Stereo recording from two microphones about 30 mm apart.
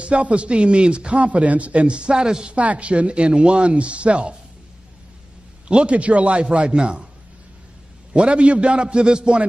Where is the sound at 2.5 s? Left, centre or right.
Right.